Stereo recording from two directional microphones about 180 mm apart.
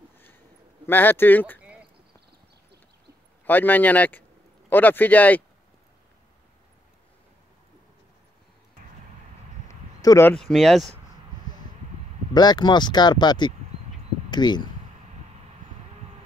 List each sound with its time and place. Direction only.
0.8 s speech: 10° left (ahead or behind)
1.6 s a sound: 5° right (ahead or behind)
3.4 s speech: 10° left (ahead or behind)
9.7 s a sound: 15° left (ahead or behind)
10.3 s speech: centre (ahead or behind)
12.4 s speech: 25° left (ahead or behind)